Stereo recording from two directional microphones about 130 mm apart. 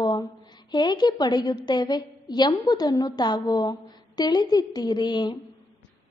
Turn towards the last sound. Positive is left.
turn(degrees=35)  # may be behind; listen again after turning